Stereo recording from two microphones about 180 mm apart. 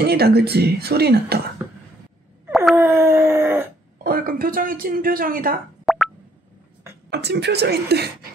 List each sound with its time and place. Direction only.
0.0 s speech: 65° right (ahead or behind)
2.7 s a sound: 15° right (ahead or behind)
4.0 s speech: 55° right (ahead or behind)
5.9 s plop: centre (ahead or behind)
7.1 s speech: 65° right (ahead or behind)